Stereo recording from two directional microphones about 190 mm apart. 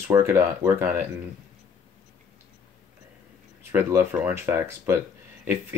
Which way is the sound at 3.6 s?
10° right (ahead or behind).